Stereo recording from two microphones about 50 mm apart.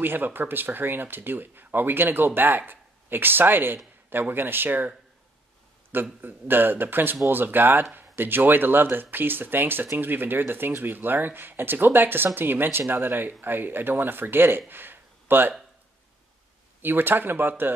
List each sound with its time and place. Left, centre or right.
0.0 s speech: right
6.2 s speech: right
14.7 s a sound: right
16.8 s speech: right